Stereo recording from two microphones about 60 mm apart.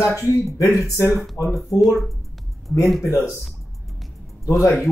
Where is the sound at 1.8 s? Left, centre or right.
Centre.